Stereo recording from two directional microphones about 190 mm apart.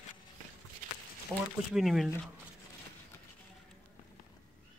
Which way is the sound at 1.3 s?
Centre (ahead or behind).